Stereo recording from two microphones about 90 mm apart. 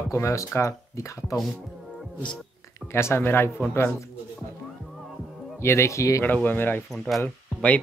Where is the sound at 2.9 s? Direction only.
25° left (ahead or behind).